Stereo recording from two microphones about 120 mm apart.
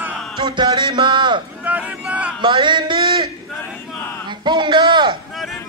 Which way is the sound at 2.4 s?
40° right (ahead or behind).